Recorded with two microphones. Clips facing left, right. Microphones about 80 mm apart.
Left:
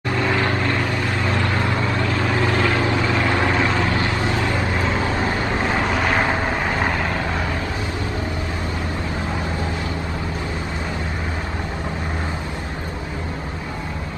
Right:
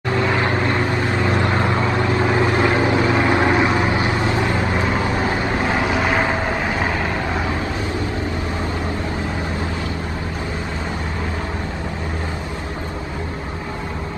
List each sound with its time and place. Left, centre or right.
0.2 s vehicle: right; by 6.3 s centre